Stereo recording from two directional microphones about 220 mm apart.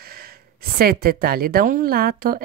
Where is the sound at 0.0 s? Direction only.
45° right (ahead or behind).